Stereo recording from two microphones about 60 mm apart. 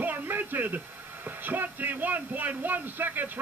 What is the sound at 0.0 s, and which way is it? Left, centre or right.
Speech, right.